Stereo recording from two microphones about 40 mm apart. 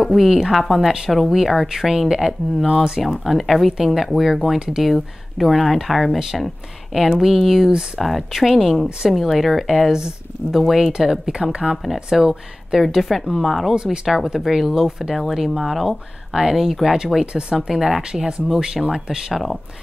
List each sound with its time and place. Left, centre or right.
0.0 s speech: centre
3.0 s speech: centre
11.3 s speech: centre
11.7 s speech: centre
12.1 s speech: centre
13.8 s speech: centre
17.2 s speech: centre